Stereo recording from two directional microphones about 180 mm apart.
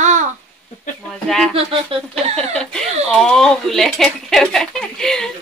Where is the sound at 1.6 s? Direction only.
30° right (ahead or behind).